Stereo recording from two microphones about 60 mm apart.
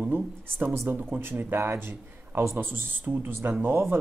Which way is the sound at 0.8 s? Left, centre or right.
Right.